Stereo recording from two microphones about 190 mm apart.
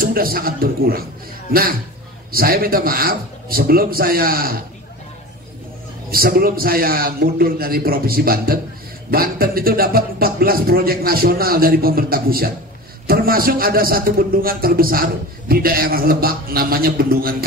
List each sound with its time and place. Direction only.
0.0 s a man's voice: 50° right (ahead or behind)
6.0 s a man's voice: 50° right (ahead or behind)